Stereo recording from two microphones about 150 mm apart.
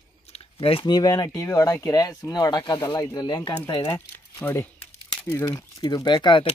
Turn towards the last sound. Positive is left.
turn(degrees=30)  # may be behind; listen again after turning